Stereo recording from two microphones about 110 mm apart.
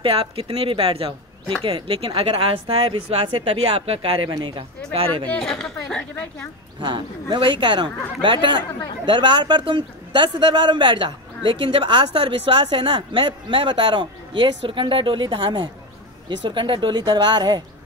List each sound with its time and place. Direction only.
0.0 s speech: 60° right (ahead or behind); by 4.6 s 45° right (ahead or behind)
5.3 s a woman's voice: 5° left (ahead or behind)
6.8 s speech: 45° right (ahead or behind)